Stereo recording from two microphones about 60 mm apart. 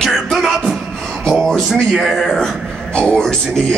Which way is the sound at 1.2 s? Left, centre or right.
Centre.